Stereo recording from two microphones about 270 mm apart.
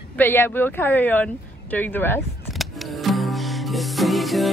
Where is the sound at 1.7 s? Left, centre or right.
Centre.